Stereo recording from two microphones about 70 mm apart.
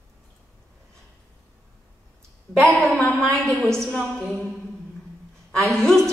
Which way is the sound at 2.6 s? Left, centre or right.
Centre.